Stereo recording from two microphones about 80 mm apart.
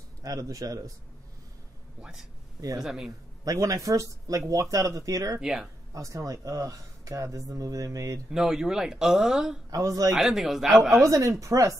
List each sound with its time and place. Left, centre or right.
0.2 s speech: right
2.0 s speech: centre
3.4 s speech: right
5.4 s speech: centre
5.9 s speech: right
8.3 s speech: centre
9.7 s a man's voice: right
10.1 s speech: centre
11.1 s a man's voice: right